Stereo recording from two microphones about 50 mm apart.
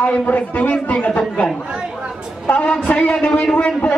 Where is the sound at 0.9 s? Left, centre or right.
Left.